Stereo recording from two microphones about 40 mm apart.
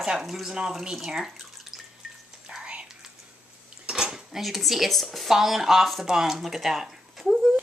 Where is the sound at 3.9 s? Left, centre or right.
Centre.